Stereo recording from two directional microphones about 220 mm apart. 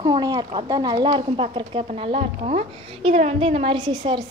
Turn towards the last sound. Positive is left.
turn(degrees=-20)  # may be behind; listen again after turning